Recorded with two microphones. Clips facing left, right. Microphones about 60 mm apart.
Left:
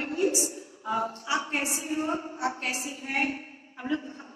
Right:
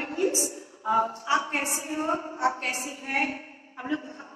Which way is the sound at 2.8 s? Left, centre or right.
Right.